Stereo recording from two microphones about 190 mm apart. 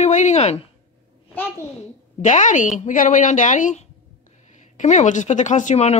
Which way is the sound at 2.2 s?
40° left (ahead or behind).